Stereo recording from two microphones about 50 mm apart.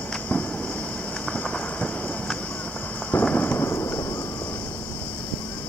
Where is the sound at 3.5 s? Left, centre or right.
Left.